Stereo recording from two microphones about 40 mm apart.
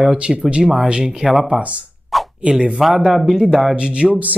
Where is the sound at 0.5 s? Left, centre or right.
Centre.